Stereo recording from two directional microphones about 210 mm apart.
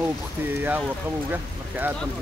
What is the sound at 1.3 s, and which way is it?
Speech, 10° right (ahead or behind).